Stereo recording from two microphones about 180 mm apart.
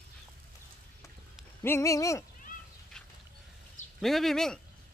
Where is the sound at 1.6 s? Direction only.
15° left (ahead or behind).